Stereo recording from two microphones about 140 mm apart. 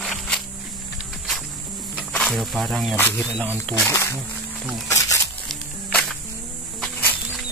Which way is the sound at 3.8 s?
20° left (ahead or behind).